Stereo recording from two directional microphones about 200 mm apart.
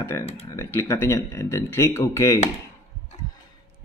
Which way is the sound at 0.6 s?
15° left (ahead or behind).